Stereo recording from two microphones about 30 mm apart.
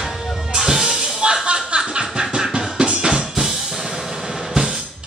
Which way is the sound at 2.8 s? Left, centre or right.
Right.